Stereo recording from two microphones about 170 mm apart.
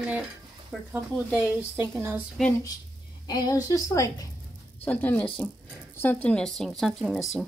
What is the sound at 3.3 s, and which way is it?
A woman's voice, 20° left (ahead or behind).